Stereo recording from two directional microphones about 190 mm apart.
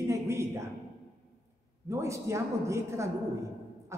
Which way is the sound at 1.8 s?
15° right (ahead or behind).